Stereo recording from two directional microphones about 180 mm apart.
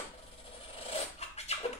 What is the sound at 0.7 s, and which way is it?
Dog, 35° left (ahead or behind).